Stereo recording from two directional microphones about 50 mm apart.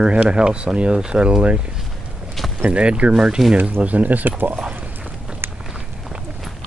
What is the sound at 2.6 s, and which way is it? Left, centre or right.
Speech, right.